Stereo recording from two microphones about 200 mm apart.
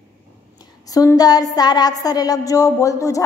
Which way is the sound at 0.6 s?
20° left (ahead or behind).